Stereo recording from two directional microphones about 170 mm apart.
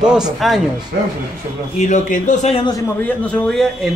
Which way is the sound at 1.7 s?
45° left (ahead or behind).